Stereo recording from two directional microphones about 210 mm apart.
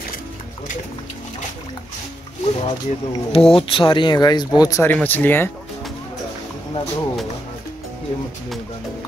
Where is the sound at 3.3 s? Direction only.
25° left (ahead or behind); by 5.5 s 10° left (ahead or behind).